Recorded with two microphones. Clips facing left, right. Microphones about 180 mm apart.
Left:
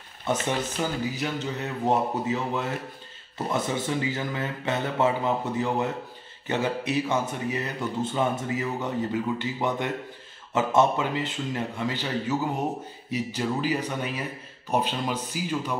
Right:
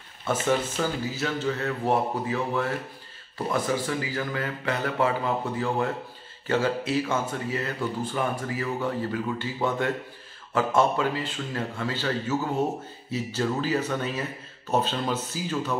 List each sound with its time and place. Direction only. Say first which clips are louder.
0.3 s speech: right 2 dB; 20° left (ahead or behind)